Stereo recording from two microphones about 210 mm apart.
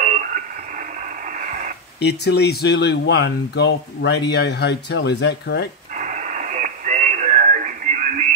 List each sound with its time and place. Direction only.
0.0 s radio: 35° right (ahead or behind)
1.4 s radio: 35° right (ahead or behind)
2.0 s speech: 50° left (ahead or behind)
5.9 s radio: 35° right (ahead or behind)